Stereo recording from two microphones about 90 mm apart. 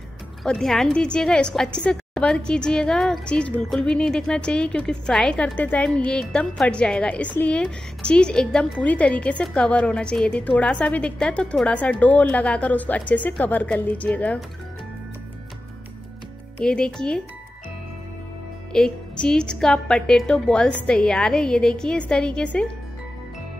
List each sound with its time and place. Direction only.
0.4 s a woman's voice: 5° left (ahead or behind)
16.5 s a woman's voice: 10° left (ahead or behind)
18.7 s a woman's voice: 10° left (ahead or behind)